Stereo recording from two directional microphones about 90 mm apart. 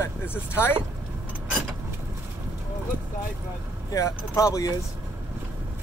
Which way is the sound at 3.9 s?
40° left (ahead or behind).